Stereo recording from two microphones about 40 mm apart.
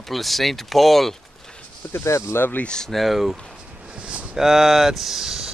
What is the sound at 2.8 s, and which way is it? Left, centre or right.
Speech, centre.